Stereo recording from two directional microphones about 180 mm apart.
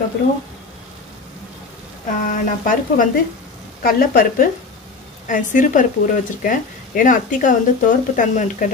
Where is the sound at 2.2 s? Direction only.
45° left (ahead or behind).